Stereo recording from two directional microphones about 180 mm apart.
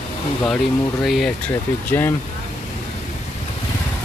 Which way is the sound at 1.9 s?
10° left (ahead or behind).